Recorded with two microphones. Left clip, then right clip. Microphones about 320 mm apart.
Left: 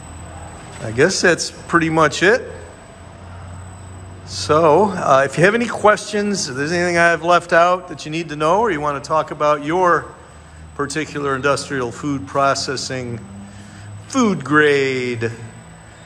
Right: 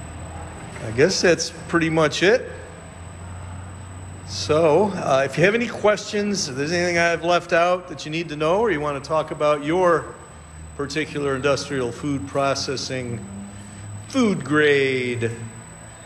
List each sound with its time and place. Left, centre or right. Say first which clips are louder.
0.9 s a man's voice: left 3 dB; centre
4.4 s a man's voice: left 4 dB; centre
14.1 s a man's voice: left 5 dB; centre